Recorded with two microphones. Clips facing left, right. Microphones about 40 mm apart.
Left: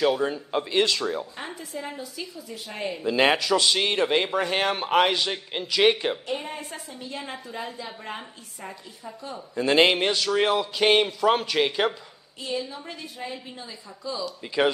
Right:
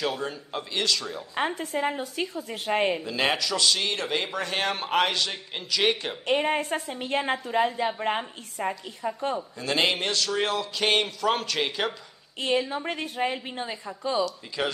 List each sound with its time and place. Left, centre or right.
0.0 s a man's voice: centre
1.3 s a woman's voice: right
3.0 s a man's voice: centre
6.2 s a woman's voice: right
9.8 s a man's voice: centre
12.4 s a woman's voice: right
14.2 s a man's voice: centre